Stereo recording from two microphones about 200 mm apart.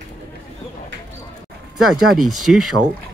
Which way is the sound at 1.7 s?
Centre (ahead or behind).